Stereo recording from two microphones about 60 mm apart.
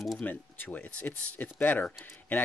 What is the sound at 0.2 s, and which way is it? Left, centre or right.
Speech, left.